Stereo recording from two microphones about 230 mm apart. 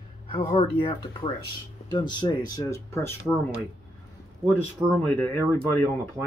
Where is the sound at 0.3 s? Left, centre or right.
Left.